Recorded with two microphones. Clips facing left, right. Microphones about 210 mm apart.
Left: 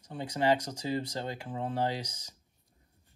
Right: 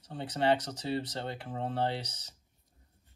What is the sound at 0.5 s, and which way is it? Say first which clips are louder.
Speech: left 1 dB; 10° left (ahead or behind).